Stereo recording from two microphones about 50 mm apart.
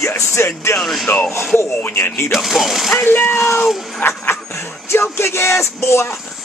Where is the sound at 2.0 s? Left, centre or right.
Left.